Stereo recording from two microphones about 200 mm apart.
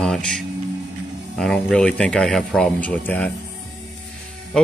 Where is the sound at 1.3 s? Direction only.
5° left (ahead or behind).